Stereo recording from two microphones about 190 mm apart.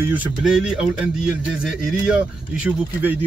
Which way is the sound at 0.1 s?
5° right (ahead or behind).